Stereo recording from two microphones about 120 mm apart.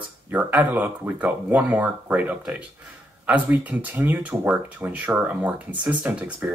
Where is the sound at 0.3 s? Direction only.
10° right (ahead or behind).